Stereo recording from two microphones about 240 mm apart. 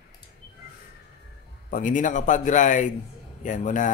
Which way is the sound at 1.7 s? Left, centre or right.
Left.